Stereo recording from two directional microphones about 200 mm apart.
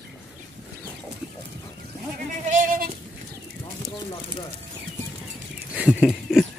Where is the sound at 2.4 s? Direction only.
40° right (ahead or behind).